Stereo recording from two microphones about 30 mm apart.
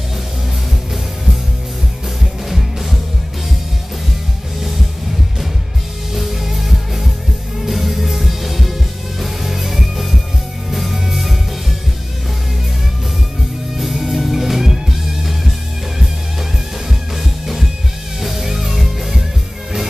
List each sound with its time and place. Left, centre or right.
2.5 s music: centre
6.1 s music: centre
13.7 s music: centre
17.2 s music: centre